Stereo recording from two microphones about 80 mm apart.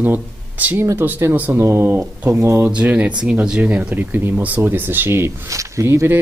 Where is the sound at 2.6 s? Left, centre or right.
Centre; by 6.2 s right.